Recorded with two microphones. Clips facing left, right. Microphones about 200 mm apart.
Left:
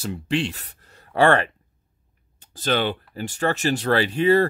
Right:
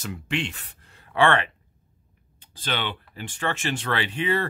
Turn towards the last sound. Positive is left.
turn(degrees=40)  # may be behind; listen again after turning